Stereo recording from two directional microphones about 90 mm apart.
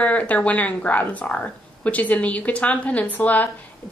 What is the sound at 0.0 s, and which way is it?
A woman's voice, 15° left (ahead or behind).